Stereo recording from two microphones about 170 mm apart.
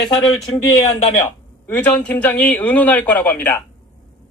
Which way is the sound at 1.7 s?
10° left (ahead or behind).